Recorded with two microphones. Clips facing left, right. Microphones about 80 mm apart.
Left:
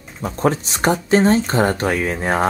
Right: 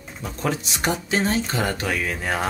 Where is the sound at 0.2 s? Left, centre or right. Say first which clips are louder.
Left 7 dB; left.